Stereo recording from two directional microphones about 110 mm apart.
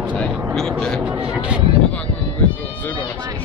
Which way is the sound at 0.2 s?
5° left (ahead or behind).